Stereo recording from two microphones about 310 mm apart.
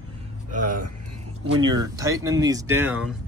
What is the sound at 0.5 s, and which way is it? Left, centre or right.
Speech, right.